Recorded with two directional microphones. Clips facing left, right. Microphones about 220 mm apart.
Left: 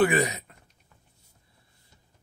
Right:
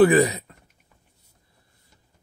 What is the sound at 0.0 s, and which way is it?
Speech, 35° right (ahead or behind).